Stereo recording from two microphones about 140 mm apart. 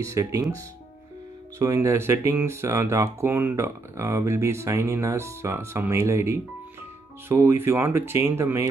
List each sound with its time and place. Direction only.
0.0 s speech: 20° right (ahead or behind)
1.6 s speech: 20° right (ahead or behind)